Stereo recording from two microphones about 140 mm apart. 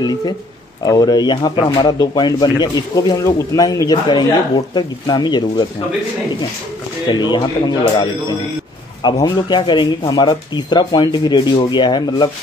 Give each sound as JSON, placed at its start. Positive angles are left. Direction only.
{"t": 0.8, "sound": "speech", "side_deg": 30}
{"t": 7.1, "sound": "speech", "side_deg": 30}